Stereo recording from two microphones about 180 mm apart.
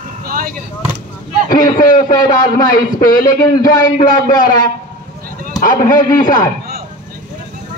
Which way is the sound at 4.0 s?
50° left (ahead or behind).